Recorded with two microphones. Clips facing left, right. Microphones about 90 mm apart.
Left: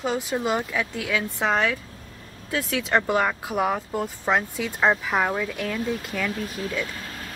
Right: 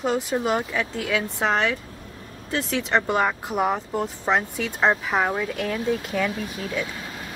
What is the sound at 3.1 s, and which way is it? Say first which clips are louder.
Speech: even; 5° right (ahead or behind).